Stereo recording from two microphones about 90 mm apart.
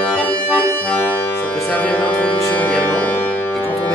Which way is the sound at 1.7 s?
15° left (ahead or behind).